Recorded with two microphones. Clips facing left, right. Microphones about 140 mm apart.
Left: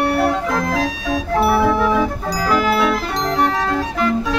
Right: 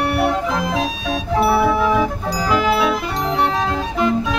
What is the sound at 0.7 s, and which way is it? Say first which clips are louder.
Organ: left 1 dB; 25° right (ahead or behind).